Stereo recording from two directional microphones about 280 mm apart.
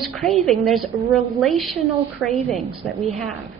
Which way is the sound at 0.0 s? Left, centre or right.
Centre.